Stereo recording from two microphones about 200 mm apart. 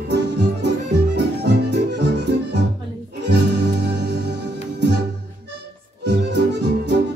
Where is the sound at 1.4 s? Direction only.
55° right (ahead or behind).